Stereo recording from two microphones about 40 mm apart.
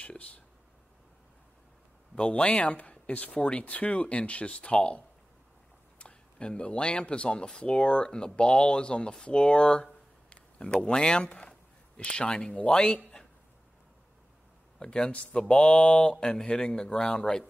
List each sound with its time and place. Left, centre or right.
0.0 s a sound: left
2.1 s speech: left
14.8 s speech: left